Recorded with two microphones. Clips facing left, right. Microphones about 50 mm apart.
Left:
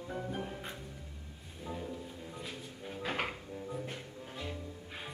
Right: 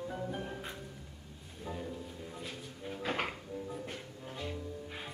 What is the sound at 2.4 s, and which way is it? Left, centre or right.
Drawer open or close, centre.